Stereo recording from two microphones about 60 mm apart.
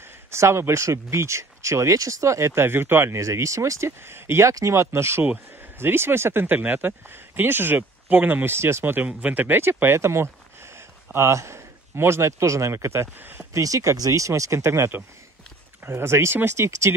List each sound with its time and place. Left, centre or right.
0.3 s speech: right
3.2 s speech: right
4.9 s speech: right
8.9 s speech: right
13.2 s speech: right
13.5 s speech: right